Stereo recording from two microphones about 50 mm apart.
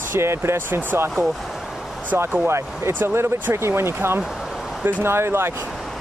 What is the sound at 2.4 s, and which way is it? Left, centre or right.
Speech, right.